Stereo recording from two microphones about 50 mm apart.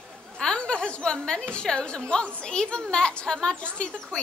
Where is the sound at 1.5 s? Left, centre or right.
Centre.